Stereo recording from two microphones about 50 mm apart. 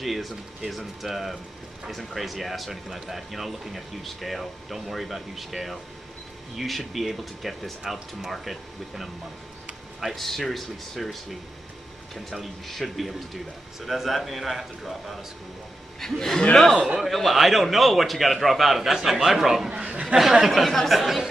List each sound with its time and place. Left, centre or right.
0.0 s a man's voice: centre
19.7 s a man's voice: centre
20.2 s speech: centre